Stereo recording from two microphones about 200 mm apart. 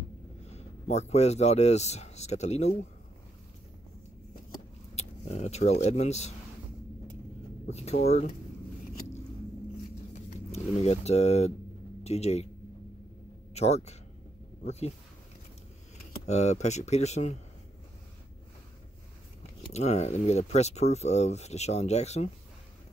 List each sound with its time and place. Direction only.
0.5 s speech: 35° left (ahead or behind)
4.5 s a sound: 35° left (ahead or behind)
7.6 s speech: 30° left (ahead or behind)
10.1 s speech: 35° left (ahead or behind)
13.5 s speech: 30° left (ahead or behind)
16.3 s speech: 35° left (ahead or behind)
19.7 s speech: 35° left (ahead or behind)